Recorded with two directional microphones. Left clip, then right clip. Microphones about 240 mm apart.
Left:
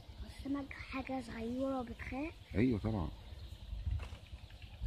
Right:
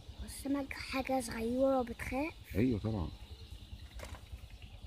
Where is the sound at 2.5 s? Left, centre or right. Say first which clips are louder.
Left 1 dB; centre.